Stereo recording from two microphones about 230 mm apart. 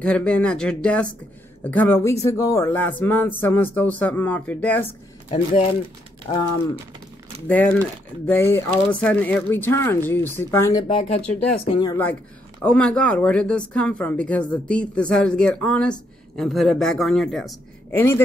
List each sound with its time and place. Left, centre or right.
0.0 s speech: centre
5.3 s speech: left
7.4 s speech: centre